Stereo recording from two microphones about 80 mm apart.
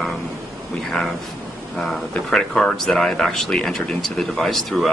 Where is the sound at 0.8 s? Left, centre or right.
Centre.